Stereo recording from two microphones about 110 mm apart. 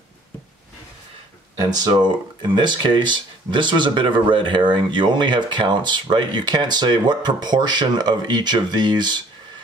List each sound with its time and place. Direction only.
1.6 s speech: 35° right (ahead or behind)